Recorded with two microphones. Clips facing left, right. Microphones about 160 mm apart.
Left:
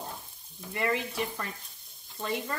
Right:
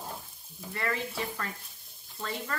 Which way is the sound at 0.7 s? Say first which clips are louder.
Left 3 dB; 20° left (ahead or behind).